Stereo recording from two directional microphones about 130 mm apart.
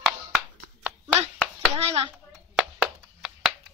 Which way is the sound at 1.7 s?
50° right (ahead or behind).